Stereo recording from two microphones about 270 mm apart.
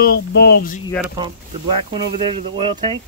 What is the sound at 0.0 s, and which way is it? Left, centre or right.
Speech, left.